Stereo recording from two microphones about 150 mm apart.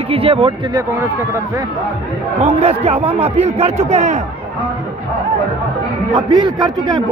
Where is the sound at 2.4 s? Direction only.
40° right (ahead or behind).